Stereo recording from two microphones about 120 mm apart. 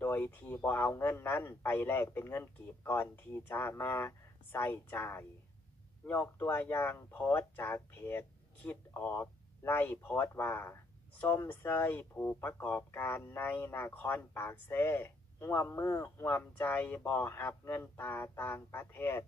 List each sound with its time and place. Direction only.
0.0 s speech: 20° left (ahead or behind)